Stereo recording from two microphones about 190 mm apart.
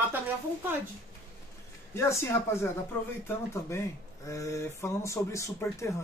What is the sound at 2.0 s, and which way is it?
Speech, 15° left (ahead or behind).